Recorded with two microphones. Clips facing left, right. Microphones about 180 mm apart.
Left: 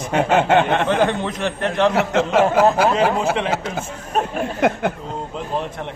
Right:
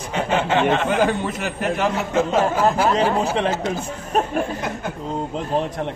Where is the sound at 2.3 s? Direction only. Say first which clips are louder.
Left 5 dB; 70° left (ahead or behind).